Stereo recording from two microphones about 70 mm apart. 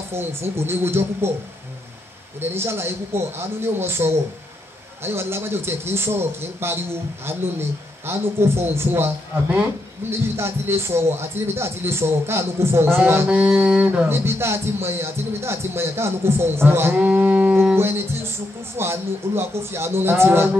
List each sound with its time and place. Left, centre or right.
0.1 s speech: right
2.5 s speech: right
10.2 s speech: right
13.3 s music: centre
14.0 s speech: right
17.0 s music: right
17.7 s speech: right